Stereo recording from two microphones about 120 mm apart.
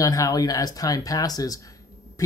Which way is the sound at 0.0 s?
30° left (ahead or behind).